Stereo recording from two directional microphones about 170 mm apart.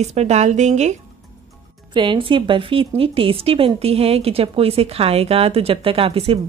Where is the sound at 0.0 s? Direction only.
40° right (ahead or behind).